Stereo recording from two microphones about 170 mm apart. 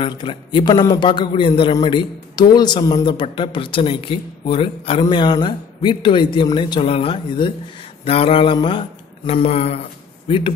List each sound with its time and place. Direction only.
0.0 s a man's voice: 30° left (ahead or behind)